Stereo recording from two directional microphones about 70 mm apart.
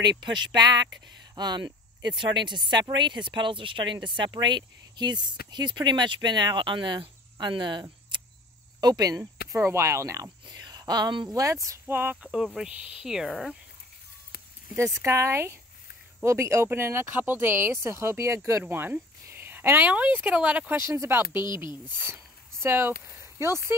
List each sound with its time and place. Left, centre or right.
0.0 s speech: right
8.8 s speech: right
9.5 s speech: right
10.4 s speech: right
11.4 s speech: right
11.9 s speech: right
12.2 s speech: centre
12.6 s speech: centre
13.0 s speech: centre
14.8 s speech: right
18.6 s speech: right
19.3 s a sound: right
19.9 s speech: right
20.7 s speech: right